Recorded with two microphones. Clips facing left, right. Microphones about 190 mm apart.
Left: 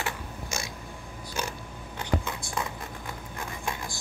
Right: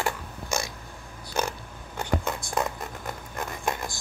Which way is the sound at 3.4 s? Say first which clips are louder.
Right 5 dB; 45° right (ahead or behind).